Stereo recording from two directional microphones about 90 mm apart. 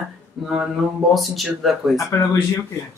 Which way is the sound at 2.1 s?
35° left (ahead or behind).